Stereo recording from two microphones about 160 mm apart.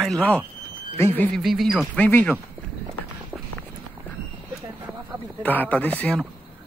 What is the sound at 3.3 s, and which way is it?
Run, 10° right (ahead or behind).